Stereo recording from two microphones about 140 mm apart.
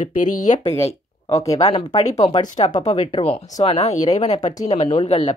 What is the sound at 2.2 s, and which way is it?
Speech, 30° left (ahead or behind).